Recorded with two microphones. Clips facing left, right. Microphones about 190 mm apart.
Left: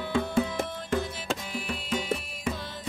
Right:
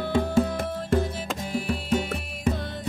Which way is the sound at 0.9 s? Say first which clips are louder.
Right 6 dB; 40° right (ahead or behind).